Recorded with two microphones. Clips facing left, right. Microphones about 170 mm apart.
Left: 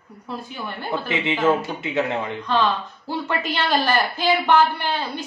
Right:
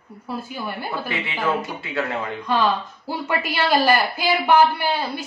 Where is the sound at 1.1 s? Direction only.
20° left (ahead or behind).